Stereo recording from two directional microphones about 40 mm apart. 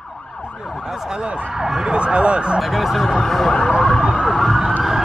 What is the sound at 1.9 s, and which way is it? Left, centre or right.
Speech, right.